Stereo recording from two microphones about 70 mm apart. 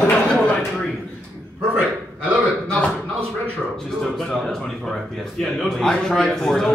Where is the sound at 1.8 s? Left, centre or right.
Right.